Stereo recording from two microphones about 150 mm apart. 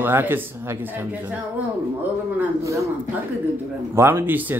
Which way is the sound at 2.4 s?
20° right (ahead or behind).